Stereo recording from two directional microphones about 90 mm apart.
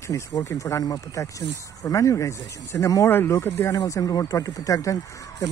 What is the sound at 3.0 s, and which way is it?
Speech, 25° left (ahead or behind).